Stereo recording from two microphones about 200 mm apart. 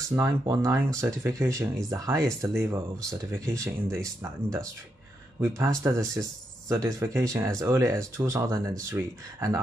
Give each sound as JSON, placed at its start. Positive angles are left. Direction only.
{"t": 0.1, "sound": "speech", "side_deg": -15}